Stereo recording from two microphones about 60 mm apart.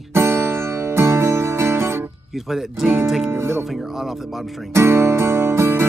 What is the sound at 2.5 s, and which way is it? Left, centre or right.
Speech, centre.